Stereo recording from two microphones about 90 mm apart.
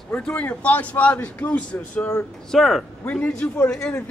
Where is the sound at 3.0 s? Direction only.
20° left (ahead or behind).